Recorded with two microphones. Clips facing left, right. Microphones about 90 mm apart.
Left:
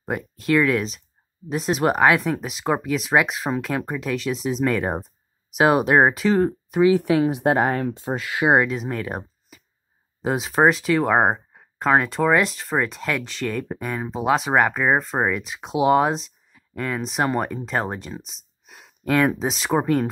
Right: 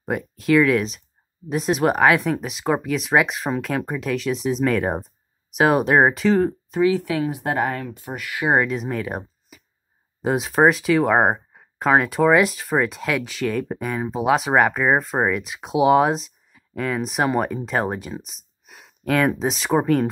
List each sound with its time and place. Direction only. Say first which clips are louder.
0.0 s speech: right 2 dB; centre (ahead or behind)
6.8 s speech: left 3 dB; 15° left (ahead or behind)
8.5 s speech: even; centre (ahead or behind)